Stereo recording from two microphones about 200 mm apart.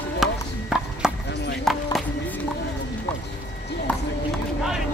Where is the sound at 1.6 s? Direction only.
Centre (ahead or behind).